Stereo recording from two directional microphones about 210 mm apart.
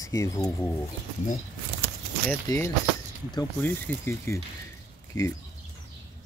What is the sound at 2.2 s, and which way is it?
Speech, 15° left (ahead or behind).